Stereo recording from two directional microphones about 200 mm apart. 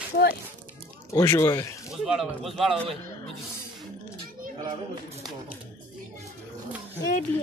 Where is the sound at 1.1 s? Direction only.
15° left (ahead or behind).